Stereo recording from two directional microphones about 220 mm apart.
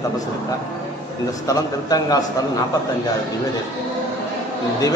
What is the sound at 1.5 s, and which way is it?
Speech, 15° left (ahead or behind).